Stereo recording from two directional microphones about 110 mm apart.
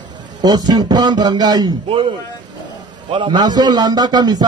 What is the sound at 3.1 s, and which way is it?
Music, 45° right (ahead or behind).